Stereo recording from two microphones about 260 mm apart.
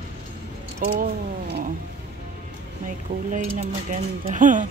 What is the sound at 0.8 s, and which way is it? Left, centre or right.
Speech, right.